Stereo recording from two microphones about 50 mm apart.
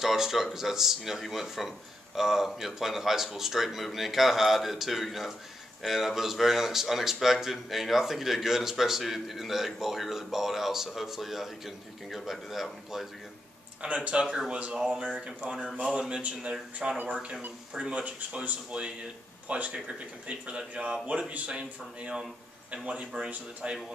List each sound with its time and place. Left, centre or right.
0.0 s speech: centre
13.7 s a man's voice: right
14.2 s speech: centre
15.9 s a man's voice: right
18.0 s a man's voice: right